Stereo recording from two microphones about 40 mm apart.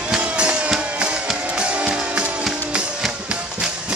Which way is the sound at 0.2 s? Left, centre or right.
Right.